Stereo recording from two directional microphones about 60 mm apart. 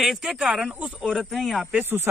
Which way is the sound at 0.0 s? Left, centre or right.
Centre.